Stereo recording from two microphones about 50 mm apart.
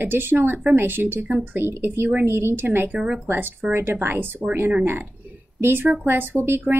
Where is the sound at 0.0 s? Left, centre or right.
Right.